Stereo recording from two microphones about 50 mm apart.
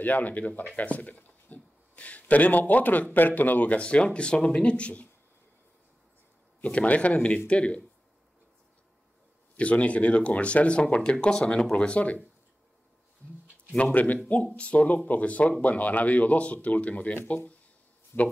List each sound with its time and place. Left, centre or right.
0.0 s speech: left
6.6 s speech: left
9.6 s speech: left
13.9 s speech: left
18.1 s speech: left